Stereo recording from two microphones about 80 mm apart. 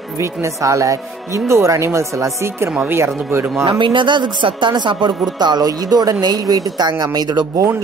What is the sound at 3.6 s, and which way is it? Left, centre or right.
Speech, right.